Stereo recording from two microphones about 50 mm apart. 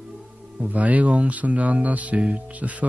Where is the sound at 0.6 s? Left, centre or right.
Right.